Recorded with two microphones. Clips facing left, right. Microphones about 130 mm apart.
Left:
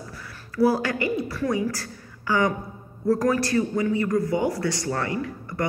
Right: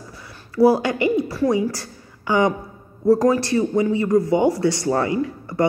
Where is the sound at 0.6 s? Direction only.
25° right (ahead or behind).